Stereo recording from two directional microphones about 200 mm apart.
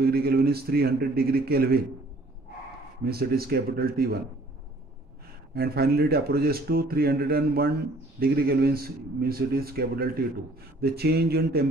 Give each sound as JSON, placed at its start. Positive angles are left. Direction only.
{"t": 0.0, "sound": "speech", "side_deg": -50}
{"t": 3.0, "sound": "speech", "side_deg": -50}
{"t": 5.5, "sound": "speech", "side_deg": -50}